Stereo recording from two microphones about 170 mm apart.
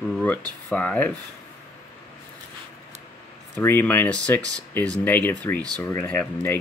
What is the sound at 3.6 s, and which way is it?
Speech, 10° left (ahead or behind).